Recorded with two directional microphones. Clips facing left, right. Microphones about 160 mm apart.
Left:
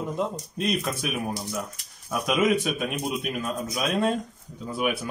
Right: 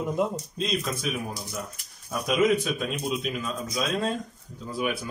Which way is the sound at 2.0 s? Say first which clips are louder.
Even; 75° left (ahead or behind).